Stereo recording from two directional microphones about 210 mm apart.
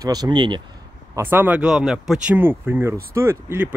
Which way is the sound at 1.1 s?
10° right (ahead or behind).